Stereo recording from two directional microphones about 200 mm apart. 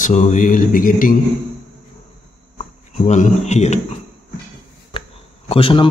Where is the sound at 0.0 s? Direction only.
35° left (ahead or behind).